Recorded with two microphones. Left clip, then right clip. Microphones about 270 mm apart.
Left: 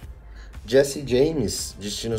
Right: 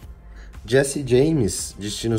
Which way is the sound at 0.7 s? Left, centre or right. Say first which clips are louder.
Even; right.